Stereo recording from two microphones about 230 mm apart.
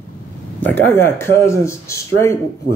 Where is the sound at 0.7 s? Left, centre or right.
Centre.